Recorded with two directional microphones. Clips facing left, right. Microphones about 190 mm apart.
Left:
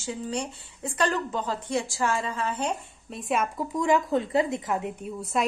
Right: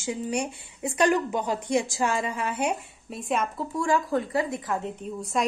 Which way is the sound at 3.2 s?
Centre (ahead or behind).